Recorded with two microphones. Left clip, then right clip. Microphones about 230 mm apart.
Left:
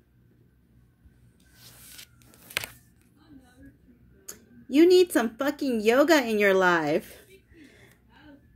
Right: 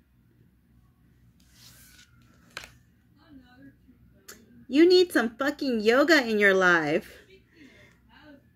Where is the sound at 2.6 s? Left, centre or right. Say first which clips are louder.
Left 9 dB; left.